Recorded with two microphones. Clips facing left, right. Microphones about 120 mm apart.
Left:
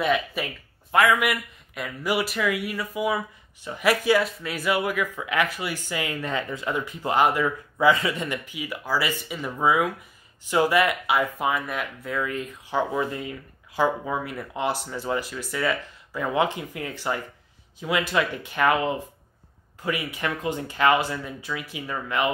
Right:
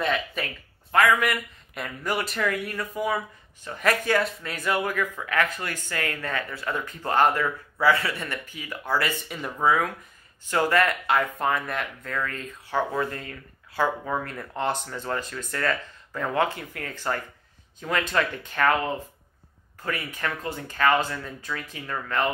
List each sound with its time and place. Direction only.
0.0 s speech: 10° left (ahead or behind)
1.7 s speech: 5° left (ahead or behind)